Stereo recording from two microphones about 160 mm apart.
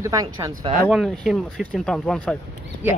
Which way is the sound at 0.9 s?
Centre (ahead or behind).